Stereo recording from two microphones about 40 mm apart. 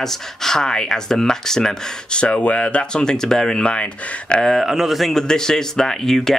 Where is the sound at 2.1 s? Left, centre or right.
Left.